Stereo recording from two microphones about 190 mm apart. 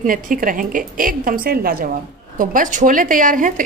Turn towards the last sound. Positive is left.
turn(degrees=-45)  # may be behind; listen again after turning